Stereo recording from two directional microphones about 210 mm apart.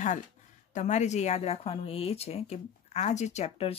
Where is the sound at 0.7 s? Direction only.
35° left (ahead or behind).